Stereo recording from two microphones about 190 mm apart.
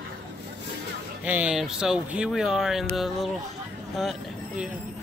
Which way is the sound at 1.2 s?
5° right (ahead or behind).